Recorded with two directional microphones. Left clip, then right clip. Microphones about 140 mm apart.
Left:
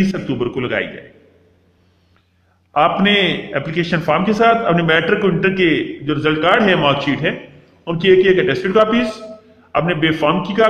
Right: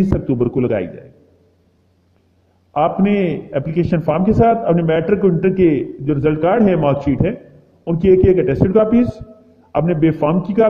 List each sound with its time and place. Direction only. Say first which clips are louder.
0.3 s a man's voice: right 5 dB; 35° right (ahead or behind)
2.7 s a man's voice: left 3 dB; 25° right (ahead or behind)
4.5 s a man's voice: left 1 dB; 20° right (ahead or behind)